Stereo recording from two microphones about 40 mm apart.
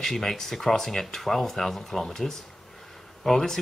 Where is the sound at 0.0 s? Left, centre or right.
Centre.